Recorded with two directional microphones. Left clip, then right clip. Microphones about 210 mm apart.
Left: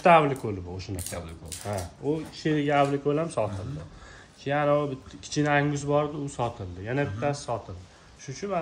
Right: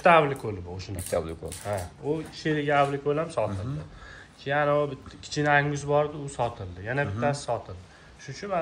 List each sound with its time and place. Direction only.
0.0 s speech: 45° left (ahead or behind)
4.5 s speech: 40° left (ahead or behind)